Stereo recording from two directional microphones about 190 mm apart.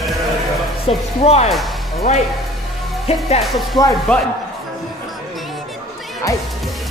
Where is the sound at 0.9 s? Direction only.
30° left (ahead or behind).